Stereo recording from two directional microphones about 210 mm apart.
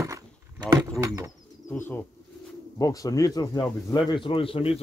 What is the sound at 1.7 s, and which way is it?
A man's voice, 10° left (ahead or behind).